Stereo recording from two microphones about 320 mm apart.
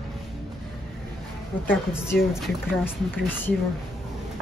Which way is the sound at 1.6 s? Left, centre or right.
Centre.